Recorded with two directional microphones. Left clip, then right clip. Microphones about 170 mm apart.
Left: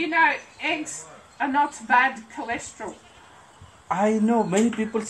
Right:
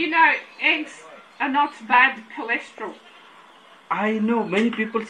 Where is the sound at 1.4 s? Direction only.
25° left (ahead or behind).